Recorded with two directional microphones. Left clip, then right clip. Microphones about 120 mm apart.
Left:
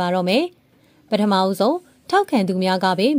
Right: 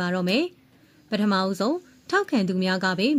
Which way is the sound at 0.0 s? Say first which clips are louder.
Left 6 dB; 35° left (ahead or behind).